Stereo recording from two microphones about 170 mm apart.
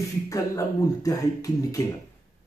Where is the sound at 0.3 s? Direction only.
20° left (ahead or behind).